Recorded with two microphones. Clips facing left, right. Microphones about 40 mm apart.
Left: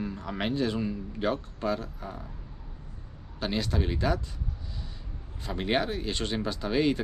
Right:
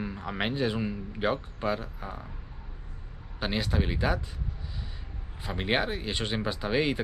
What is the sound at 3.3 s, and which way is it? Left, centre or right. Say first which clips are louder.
Speech: even; centre.